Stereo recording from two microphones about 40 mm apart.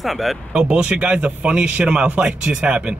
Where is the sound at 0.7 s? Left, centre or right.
Right.